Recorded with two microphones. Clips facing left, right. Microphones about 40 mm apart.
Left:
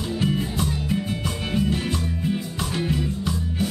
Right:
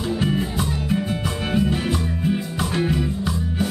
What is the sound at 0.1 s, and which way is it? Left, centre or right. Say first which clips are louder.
Music: right 1 dB; centre.